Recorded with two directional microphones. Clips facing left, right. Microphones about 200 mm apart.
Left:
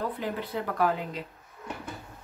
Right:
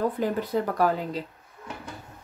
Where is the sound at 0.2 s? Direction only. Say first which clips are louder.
Right 6 dB; 40° right (ahead or behind).